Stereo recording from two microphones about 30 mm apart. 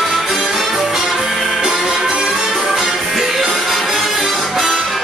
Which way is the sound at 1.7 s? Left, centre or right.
Right.